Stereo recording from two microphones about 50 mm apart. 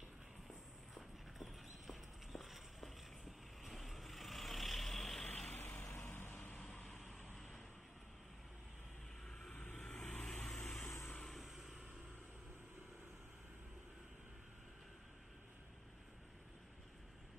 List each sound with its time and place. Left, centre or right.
0.9 s clip-clop: centre
5.5 s vehicle: left
7.3 s vehicle: centre
9.2 s vehicle: centre